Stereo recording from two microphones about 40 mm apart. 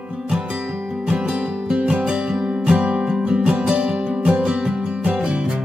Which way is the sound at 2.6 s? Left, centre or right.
Right.